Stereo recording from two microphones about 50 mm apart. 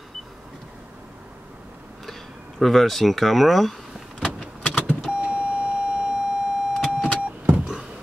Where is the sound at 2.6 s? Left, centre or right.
Centre.